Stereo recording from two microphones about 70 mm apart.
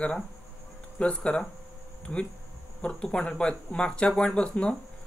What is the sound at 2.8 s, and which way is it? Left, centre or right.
Speech, centre.